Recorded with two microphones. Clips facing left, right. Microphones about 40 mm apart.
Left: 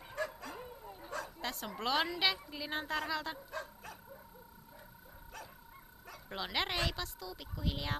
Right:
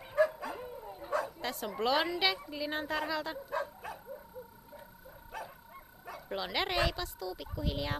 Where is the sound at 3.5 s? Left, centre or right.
Centre.